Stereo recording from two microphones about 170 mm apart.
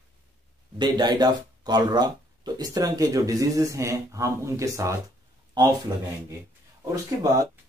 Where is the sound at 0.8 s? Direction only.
25° right (ahead or behind).